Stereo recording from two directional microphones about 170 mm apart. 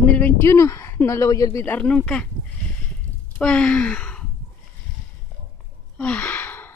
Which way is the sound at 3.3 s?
5° left (ahead or behind).